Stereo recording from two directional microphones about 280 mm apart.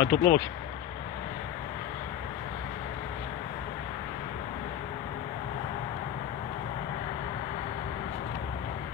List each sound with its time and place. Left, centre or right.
0.0 s speech: left